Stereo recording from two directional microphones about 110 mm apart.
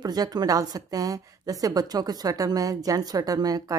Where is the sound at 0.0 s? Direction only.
35° right (ahead or behind).